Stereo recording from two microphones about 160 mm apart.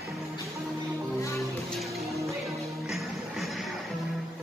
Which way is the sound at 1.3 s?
Centre (ahead or behind).